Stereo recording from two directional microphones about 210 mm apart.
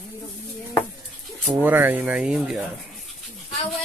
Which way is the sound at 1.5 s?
10° right (ahead or behind).